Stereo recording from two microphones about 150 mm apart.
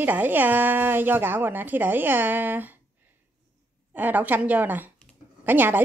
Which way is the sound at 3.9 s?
10° right (ahead or behind).